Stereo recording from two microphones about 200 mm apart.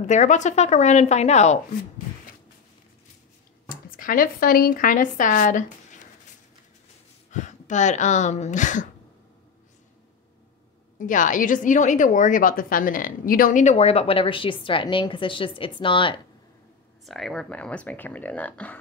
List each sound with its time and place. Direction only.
0.0 s a woman's voice: 35° left (ahead or behind)
3.6 s speech: 45° left (ahead or behind)
7.2 s speech: 35° left (ahead or behind)
11.0 s a woman's voice: 40° left (ahead or behind); by 16.2 s 25° left (ahead or behind)
17.0 s speech: centre (ahead or behind)